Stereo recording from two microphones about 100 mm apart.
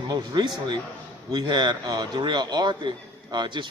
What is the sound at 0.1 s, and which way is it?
A man's voice, 45° right (ahead or behind).